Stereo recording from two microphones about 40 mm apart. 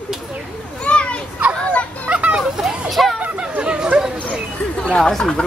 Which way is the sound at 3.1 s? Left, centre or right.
Right.